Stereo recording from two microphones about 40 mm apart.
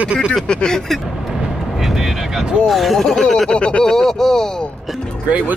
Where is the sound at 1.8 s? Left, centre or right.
Centre.